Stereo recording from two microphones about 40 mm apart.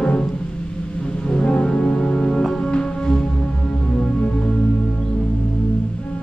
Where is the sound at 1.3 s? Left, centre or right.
Left.